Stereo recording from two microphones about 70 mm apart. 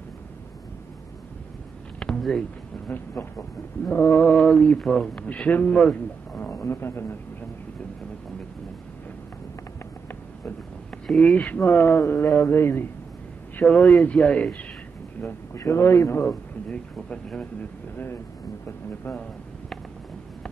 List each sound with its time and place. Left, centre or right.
2.0 s a sound: centre
3.9 s speech: left
4.3 s a man's voice: centre
6.5 s speech: left
11.1 s speech: centre
11.3 s speech: left
13.6 s a man's voice: left
15.5 s speech: left
16.3 s speech: centre
17.4 s speech: left